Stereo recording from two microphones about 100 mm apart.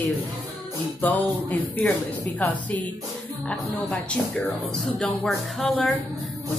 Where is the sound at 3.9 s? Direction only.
10° left (ahead or behind).